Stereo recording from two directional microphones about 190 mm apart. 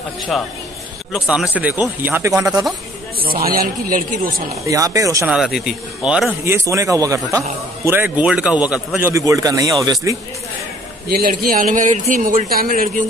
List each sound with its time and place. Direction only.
0.3 s a man's voice: centre (ahead or behind)
3.2 s speech: 50° right (ahead or behind)
4.6 s speech: 15° right (ahead or behind)
5.2 s speech: centre (ahead or behind); by 9.7 s 20° right (ahead or behind)
11.5 s speech: 45° right (ahead or behind)